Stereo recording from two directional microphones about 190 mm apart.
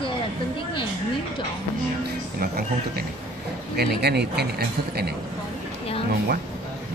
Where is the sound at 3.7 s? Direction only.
55° right (ahead or behind).